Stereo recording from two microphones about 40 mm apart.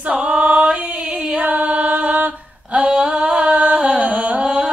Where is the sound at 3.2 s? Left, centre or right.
Right.